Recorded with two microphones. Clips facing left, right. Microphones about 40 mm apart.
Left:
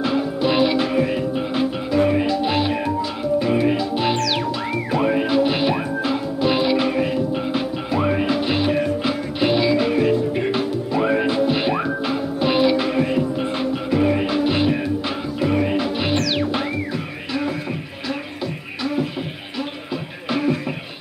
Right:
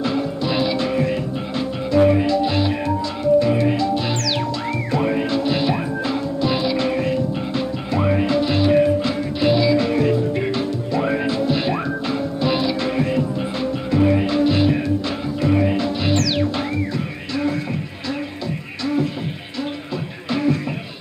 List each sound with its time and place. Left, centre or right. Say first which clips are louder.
0.0 s music: left 2 dB; centre
20.2 s music: right 1 dB; centre